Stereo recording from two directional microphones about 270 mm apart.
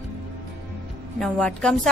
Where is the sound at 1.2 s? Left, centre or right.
Centre.